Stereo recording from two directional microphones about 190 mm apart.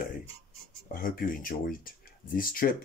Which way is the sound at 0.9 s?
50° left (ahead or behind).